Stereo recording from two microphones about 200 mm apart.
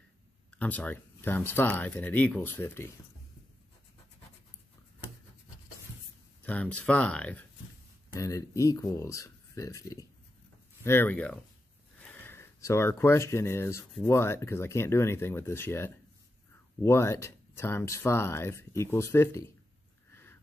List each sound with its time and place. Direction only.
0.5 s speech: 10° left (ahead or behind)
6.4 s speech: 5° left (ahead or behind)
20.1 s a sound: 10° left (ahead or behind)